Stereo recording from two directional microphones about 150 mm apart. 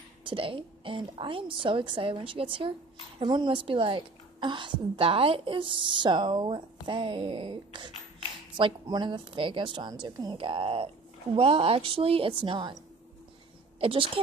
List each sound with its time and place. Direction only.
0.2 s a woman's voice: 35° right (ahead or behind)
13.7 s a woman's voice: 35° right (ahead or behind)